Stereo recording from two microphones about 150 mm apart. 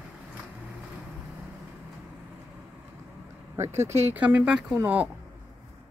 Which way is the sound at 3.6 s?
20° right (ahead or behind).